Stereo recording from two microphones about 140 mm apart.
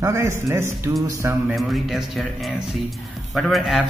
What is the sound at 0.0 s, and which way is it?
Speech, 20° right (ahead or behind).